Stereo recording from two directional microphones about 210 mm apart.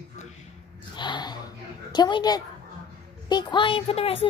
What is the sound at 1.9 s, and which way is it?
A woman's voice, 20° left (ahead or behind).